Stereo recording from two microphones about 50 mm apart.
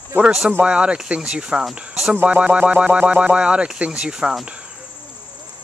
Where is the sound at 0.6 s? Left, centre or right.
Right.